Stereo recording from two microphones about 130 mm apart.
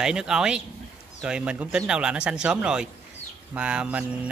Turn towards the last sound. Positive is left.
turn(degrees=-10)  # may be behind; listen again after turning